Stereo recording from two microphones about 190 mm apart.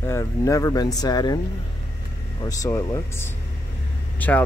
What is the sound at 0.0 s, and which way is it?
Speech, 15° left (ahead or behind).